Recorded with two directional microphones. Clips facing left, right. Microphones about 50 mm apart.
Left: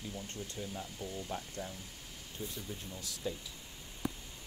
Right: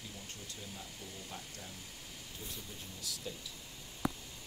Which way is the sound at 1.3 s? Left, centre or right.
Left.